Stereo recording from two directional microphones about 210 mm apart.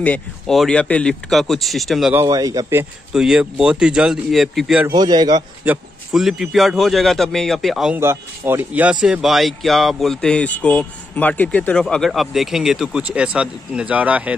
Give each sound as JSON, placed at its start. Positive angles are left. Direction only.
{"t": 0.0, "sound": "speech", "side_deg": 5}
{"t": 2.2, "sound": "speech", "side_deg": -15}
{"t": 4.8, "sound": "a man's voice", "side_deg": -20}
{"t": 5.7, "sound": "speech", "side_deg": 0}